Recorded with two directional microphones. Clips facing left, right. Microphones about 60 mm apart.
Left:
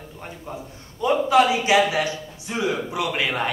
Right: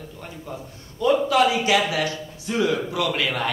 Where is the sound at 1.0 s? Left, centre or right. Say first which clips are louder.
Left 1 dB; left.